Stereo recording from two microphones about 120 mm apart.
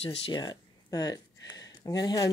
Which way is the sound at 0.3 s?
40° left (ahead or behind).